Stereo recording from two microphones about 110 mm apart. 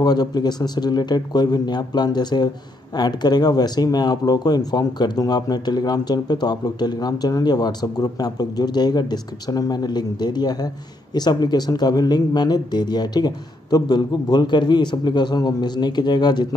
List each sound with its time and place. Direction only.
0.0 s speech: 40° left (ahead or behind)